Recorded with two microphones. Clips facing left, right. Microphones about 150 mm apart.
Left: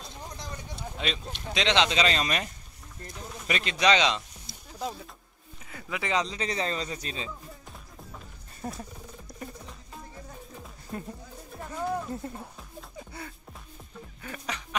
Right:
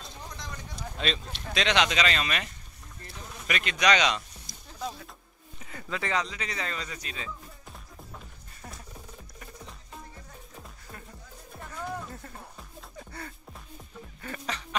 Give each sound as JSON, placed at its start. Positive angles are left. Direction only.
{"t": 0.8, "sound": "a sound", "side_deg": 10}
{"t": 1.2, "sound": "speech", "side_deg": 20}
{"t": 5.7, "sound": "speech", "side_deg": 10}
{"t": 8.6, "sound": "speech", "side_deg": 30}
{"t": 10.9, "sound": "speech", "side_deg": 30}
{"t": 11.7, "sound": "music", "side_deg": 20}
{"t": 12.4, "sound": "music", "side_deg": 5}